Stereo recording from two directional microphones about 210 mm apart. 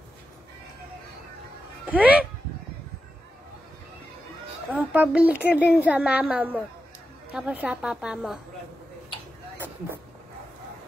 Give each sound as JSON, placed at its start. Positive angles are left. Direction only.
{"t": 1.9, "sound": "speech", "side_deg": -5}
{"t": 4.6, "sound": "a woman's voice", "side_deg": -5}